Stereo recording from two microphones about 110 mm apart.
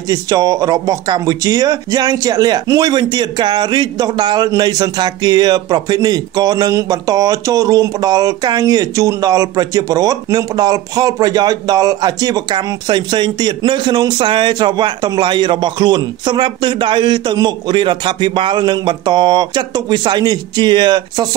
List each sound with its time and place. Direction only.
0.1 s speech: 35° right (ahead or behind)